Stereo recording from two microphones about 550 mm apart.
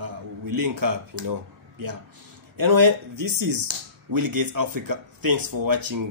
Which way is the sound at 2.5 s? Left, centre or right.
Right.